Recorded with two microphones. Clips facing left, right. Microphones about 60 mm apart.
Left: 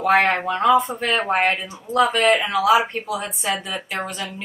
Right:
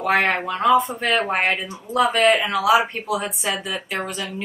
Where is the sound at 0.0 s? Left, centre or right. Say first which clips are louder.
Left 2 dB; centre.